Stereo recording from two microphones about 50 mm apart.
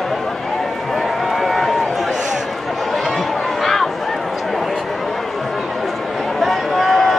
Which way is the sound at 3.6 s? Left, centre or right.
Centre.